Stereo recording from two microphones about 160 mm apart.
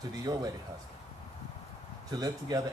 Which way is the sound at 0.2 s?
20° right (ahead or behind).